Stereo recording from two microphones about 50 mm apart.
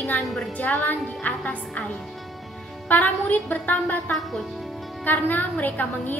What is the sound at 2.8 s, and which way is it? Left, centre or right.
A woman's voice, left.